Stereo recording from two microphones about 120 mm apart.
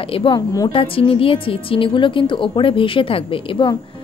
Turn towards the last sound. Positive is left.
turn(degrees=45)  # may be behind; listen again after turning